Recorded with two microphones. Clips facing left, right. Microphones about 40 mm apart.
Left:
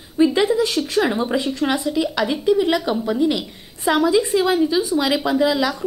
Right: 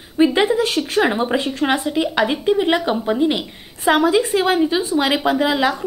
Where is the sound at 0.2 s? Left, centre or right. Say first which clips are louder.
Right 1 dB; right.